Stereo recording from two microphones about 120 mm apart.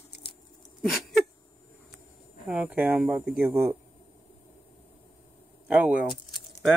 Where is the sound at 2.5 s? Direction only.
10° right (ahead or behind).